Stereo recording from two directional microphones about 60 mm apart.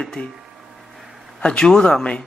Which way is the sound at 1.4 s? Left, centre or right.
Centre.